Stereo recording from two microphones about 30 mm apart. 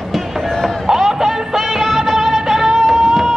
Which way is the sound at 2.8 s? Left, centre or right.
Centre.